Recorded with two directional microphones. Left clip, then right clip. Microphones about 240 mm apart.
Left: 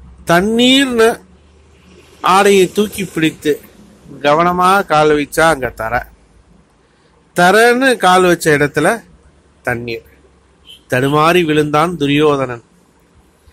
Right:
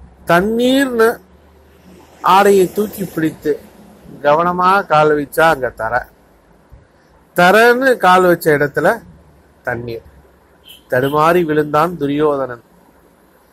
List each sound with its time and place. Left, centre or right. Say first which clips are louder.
0.2 s speech: left 1 dB; left
2.2 s speech: even; centre
7.3 s speech: even; centre
10.9 s speech: left 1 dB; left